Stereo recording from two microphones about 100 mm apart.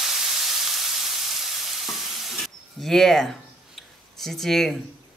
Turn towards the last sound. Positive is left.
turn(degrees=5)  # may be behind; listen again after turning